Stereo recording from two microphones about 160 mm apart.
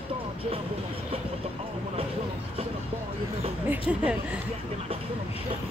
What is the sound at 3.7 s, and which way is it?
Speech, 10° right (ahead or behind).